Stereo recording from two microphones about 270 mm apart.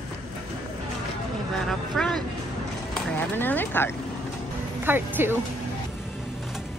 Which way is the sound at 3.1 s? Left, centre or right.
Centre.